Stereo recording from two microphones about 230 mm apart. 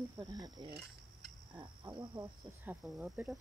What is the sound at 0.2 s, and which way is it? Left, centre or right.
Speech, centre.